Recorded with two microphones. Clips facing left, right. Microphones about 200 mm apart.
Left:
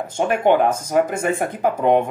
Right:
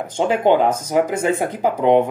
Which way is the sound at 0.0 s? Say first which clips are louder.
Right 1 dB; 15° right (ahead or behind).